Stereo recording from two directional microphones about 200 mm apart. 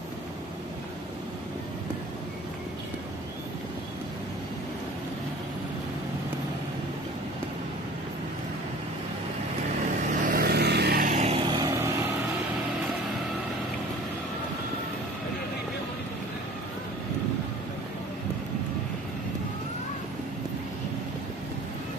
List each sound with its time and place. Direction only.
10.1 s vehicle: 45° right (ahead or behind)
11.1 s vehicle: 30° right (ahead or behind)